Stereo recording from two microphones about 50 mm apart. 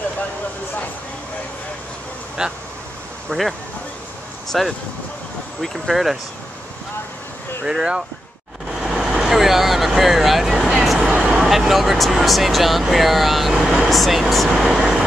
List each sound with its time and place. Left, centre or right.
2.4 s speech: centre
3.3 s speech: centre
7.6 s speech: centre
8.7 s vehicle: centre
9.2 s speech: centre
14.6 s speech: centre